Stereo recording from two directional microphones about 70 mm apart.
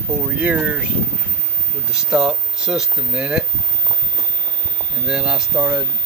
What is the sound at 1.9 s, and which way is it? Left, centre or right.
Speech, centre.